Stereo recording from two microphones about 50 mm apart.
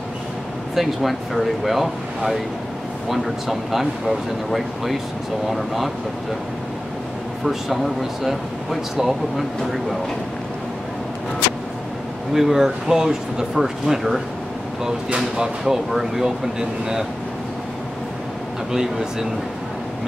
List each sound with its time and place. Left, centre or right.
0.7 s speech: centre
7.4 s speech: centre
12.4 s speech: centre
18.7 s speech: centre